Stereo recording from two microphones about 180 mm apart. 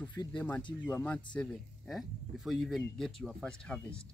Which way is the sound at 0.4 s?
10° left (ahead or behind).